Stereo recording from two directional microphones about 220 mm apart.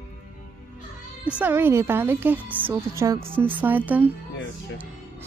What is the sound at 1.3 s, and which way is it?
Speech, 5° right (ahead or behind).